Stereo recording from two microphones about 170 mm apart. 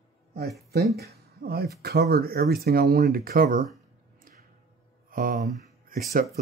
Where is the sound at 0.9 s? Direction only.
65° right (ahead or behind).